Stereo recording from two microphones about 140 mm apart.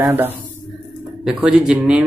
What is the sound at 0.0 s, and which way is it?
Speech, 15° right (ahead or behind).